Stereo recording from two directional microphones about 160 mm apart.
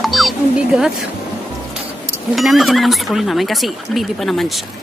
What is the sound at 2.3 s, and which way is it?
Speech, centre (ahead or behind).